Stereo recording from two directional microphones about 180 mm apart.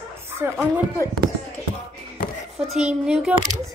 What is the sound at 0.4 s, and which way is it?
Speech, 15° right (ahead or behind).